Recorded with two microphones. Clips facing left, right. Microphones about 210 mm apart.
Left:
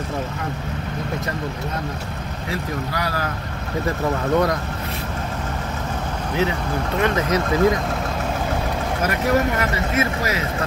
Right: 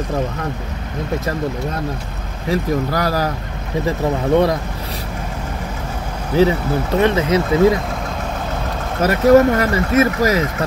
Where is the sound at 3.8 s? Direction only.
25° right (ahead or behind).